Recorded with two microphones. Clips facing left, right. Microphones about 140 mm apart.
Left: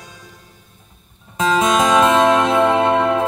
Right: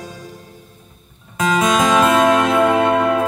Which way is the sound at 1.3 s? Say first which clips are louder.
Even; 25° left (ahead or behind).